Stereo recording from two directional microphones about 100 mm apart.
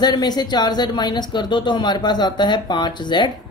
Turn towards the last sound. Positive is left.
turn(degrees=50)  # may be behind; listen again after turning